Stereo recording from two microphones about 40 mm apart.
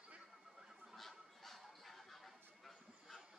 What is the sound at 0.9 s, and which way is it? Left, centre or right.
Honk, centre.